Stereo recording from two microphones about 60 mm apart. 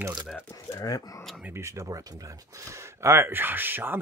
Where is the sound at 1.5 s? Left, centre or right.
Right.